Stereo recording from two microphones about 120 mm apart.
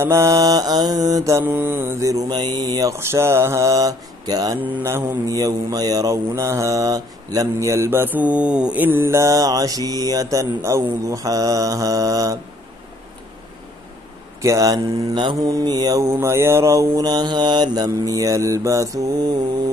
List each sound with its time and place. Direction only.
0.0 s mantra: 25° right (ahead or behind)
1.4 s mantra: 20° right (ahead or behind)
4.6 s mantra: 20° right (ahead or behind)
14.4 s mantra: 25° right (ahead or behind)